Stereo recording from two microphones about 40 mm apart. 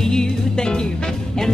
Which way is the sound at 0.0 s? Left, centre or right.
Centre.